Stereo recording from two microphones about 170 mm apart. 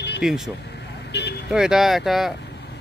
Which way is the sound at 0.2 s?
5° right (ahead or behind).